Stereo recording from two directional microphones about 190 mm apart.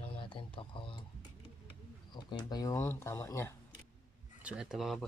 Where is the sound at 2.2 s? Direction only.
20° left (ahead or behind).